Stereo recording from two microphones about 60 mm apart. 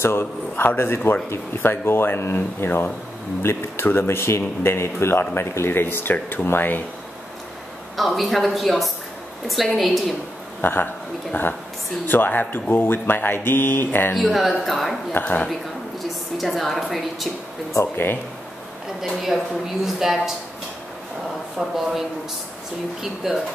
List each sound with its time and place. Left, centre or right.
0.0 s speech: left
8.0 s a woman's voice: centre
10.6 s speech: left
12.1 s speech: left
14.1 s a woman's voice: centre
15.1 s speech: left
16.3 s a woman's voice: centre
17.9 s speech: left
19.0 s a woman's voice: centre
19.8 s speech: centre
21.5 s a woman's voice: centre